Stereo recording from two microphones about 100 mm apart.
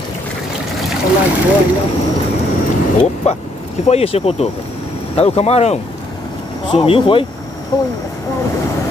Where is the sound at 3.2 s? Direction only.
90° left.